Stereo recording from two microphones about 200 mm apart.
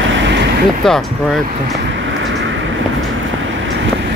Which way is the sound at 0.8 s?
Centre (ahead or behind).